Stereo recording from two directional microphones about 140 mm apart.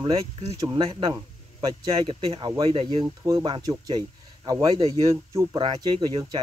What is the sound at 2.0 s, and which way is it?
Speech, 40° right (ahead or behind).